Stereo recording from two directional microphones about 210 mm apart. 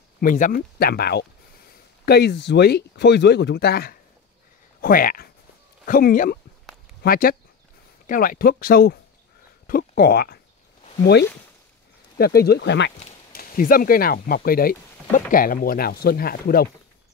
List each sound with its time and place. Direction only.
0.2 s speech: 40° left (ahead or behind)
12.2 s speech: 45° left (ahead or behind)